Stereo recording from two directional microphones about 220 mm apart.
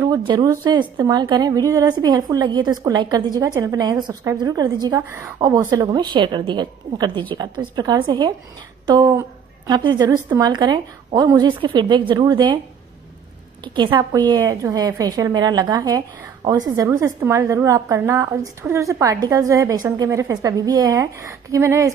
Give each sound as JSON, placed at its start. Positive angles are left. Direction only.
{"t": 0.0, "sound": "a woman's voice", "side_deg": -20}
{"t": 13.7, "sound": "a woman's voice", "side_deg": -20}